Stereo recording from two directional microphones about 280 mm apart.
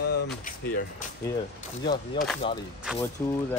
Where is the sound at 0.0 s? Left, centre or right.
Left.